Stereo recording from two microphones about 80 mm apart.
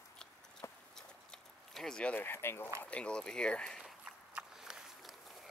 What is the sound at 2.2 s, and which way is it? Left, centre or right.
Speech, left.